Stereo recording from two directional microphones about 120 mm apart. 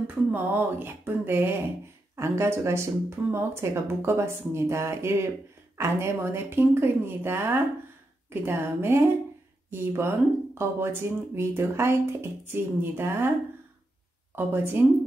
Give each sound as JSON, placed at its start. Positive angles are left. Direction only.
{"t": 0.0, "sound": "speech", "side_deg": -15}
{"t": 14.3, "sound": "speech", "side_deg": -15}